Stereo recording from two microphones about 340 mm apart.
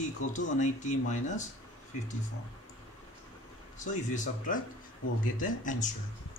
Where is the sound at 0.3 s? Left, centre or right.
Left.